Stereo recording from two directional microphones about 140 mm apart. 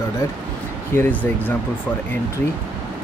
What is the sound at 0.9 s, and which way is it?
Speech, 15° left (ahead or behind).